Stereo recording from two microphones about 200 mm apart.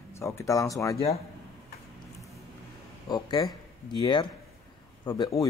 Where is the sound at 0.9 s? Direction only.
30° left (ahead or behind).